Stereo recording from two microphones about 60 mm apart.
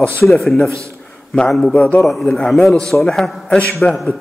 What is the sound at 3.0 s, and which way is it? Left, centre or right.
Speech, centre.